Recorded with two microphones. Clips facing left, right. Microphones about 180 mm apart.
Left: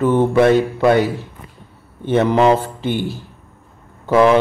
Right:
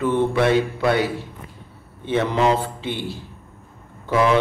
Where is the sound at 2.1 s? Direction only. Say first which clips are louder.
Left 6 dB; 55° left (ahead or behind).